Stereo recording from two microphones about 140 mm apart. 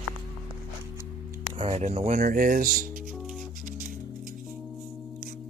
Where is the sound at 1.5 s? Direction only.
45° right (ahead or behind).